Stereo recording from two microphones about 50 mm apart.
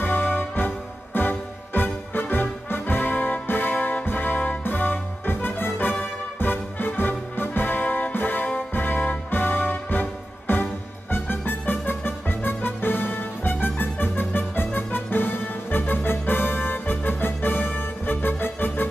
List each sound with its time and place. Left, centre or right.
0.0 s music: left